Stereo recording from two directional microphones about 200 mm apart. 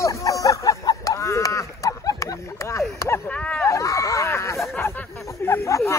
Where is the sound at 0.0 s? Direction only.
15° left (ahead or behind).